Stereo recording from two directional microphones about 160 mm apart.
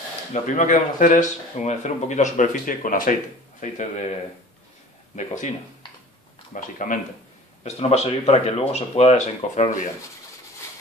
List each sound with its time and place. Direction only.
0.3 s speech: 55° left (ahead or behind)
3.7 s speech: 45° left (ahead or behind)
6.5 s speech: 55° left (ahead or behind)
7.6 s speech: 40° left (ahead or behind)